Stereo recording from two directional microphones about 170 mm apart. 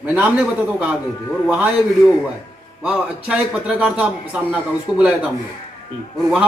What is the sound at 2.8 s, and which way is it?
Speech, 5° right (ahead or behind).